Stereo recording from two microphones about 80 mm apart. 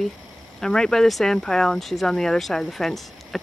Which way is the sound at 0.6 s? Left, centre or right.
Centre.